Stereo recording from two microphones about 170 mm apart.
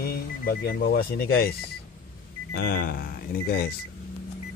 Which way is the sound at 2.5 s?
60° left (ahead or behind).